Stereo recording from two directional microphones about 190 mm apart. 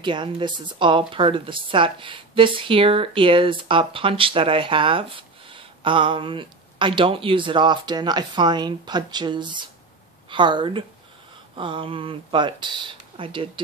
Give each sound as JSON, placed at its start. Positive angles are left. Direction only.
{"t": 0.0, "sound": "a woman's voice", "side_deg": -25}